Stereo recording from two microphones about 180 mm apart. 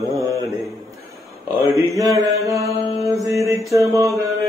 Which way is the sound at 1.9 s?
Centre (ahead or behind).